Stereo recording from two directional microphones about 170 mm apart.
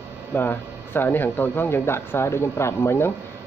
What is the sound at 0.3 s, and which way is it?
Speech, 10° left (ahead or behind).